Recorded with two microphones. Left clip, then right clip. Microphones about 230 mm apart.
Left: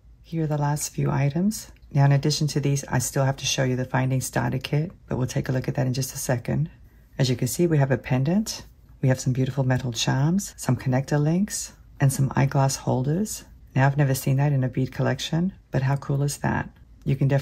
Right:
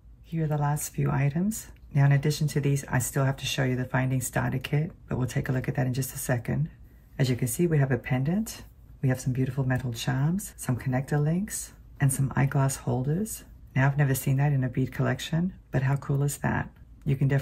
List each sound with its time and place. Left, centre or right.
0.3 s speech: centre